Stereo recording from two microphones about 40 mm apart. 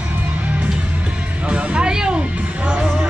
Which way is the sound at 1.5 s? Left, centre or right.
Right.